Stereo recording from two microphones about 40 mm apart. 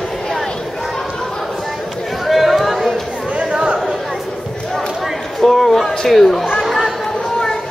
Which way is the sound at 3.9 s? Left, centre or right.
Centre.